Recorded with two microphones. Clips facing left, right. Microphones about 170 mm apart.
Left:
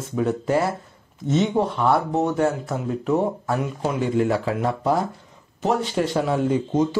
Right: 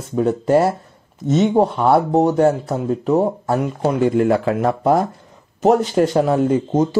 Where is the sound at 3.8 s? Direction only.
55° right (ahead or behind).